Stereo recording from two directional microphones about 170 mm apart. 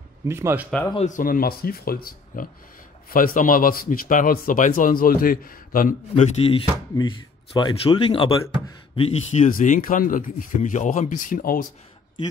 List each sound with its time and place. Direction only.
0.3 s speech: 15° right (ahead or behind)
0.9 s speech: 45° left (ahead or behind)
7.0 s speech: 25° left (ahead or behind); by 11.6 s 55° left (ahead or behind)